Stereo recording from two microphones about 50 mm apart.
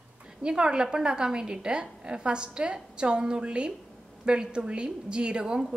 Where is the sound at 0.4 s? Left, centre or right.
Centre.